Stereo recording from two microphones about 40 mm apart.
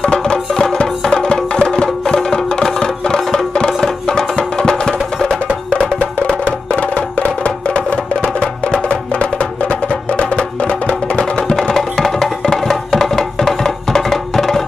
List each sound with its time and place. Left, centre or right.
0.2 s music: centre
3.2 s music: centre
3.5 s music: left
6.2 s music: left
11.5 s music: centre